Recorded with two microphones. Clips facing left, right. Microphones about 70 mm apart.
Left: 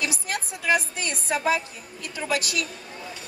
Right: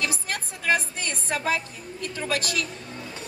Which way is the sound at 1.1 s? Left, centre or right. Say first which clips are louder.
Left 3 dB; centre.